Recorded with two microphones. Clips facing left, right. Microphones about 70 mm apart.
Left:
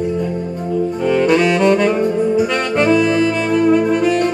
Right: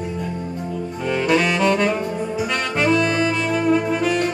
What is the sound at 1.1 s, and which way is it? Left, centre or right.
Saxophone, centre.